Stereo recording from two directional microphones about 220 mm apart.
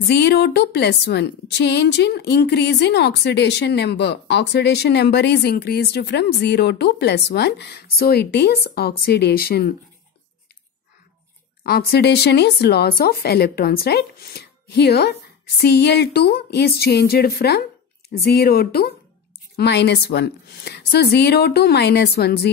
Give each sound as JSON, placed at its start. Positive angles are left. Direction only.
{"t": 0.1, "sound": "a woman's voice", "side_deg": 50}
{"t": 11.6, "sound": "a woman's voice", "side_deg": 45}